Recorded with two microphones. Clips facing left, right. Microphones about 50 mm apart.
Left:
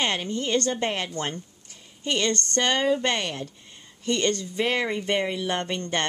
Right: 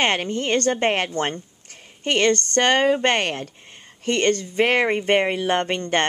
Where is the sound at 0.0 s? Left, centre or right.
Right.